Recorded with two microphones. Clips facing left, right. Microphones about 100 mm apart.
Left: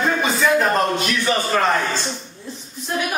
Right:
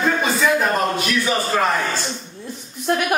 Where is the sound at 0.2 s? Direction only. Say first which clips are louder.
Left 1 dB; 5° right (ahead or behind).